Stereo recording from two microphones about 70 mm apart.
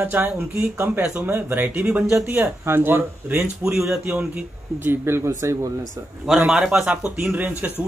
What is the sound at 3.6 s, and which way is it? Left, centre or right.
Speech, centre.